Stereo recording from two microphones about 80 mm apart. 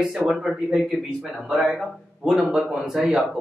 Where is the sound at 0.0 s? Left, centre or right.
Centre.